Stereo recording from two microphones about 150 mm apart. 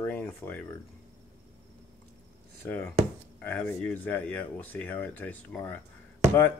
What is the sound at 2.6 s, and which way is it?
Speech, 15° left (ahead or behind).